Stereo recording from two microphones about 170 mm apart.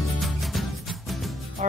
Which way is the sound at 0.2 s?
Centre (ahead or behind).